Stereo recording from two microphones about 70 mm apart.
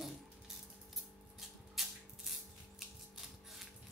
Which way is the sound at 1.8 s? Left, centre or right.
Centre.